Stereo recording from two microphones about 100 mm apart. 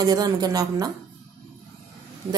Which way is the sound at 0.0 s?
40° right (ahead or behind).